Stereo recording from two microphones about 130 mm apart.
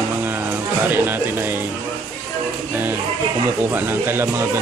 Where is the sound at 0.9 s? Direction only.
15° right (ahead or behind).